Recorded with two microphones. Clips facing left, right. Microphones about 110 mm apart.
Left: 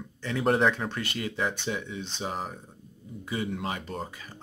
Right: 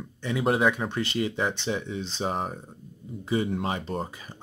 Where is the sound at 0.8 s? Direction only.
20° right (ahead or behind).